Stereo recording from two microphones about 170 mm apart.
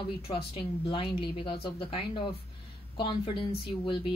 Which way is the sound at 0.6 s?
30° left (ahead or behind).